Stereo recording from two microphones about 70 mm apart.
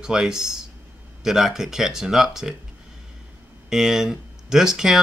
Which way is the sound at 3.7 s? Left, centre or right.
Centre.